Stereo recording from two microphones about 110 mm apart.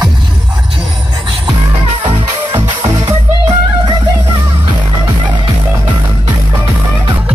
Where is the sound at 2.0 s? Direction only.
45° right (ahead or behind).